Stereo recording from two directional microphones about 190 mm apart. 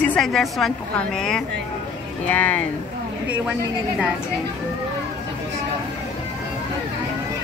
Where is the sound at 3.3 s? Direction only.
5° right (ahead or behind).